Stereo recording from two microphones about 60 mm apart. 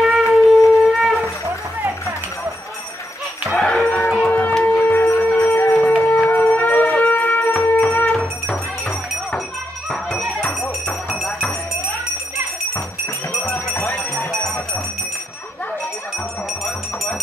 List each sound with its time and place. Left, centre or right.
0.0 s wind instrument: centre
3.4 s livestock: centre
3.8 s howl: left
4.3 s wind instrument: left
4.6 s music: left
8.1 s music: centre
10.4 s music: centre
13.5 s music: centre